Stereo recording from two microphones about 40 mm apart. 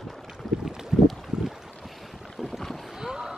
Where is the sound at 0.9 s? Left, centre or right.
Centre.